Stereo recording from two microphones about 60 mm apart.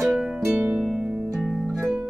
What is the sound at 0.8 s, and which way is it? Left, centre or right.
Harp, centre.